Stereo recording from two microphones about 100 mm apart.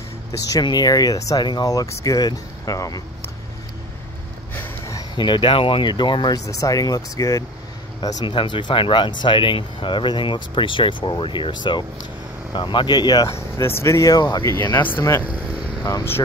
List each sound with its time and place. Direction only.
0.5 s speech: 40° left (ahead or behind)
4.6 s a sound: 30° left (ahead or behind)
5.1 s speech: 50° left (ahead or behind)
6.3 s speech: 35° left (ahead or behind)
8.3 s speech: 55° left (ahead or behind)
13.3 s speech: 25° left (ahead or behind); by 14.5 s 40° left (ahead or behind)
14.8 s speech: 20° left (ahead or behind)